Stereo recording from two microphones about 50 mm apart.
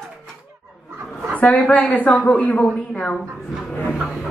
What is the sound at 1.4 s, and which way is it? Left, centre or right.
Speech, left.